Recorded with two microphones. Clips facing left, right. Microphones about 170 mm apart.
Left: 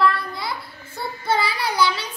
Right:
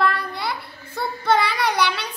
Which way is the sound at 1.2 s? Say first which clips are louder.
Right 3 dB; 65° right (ahead or behind).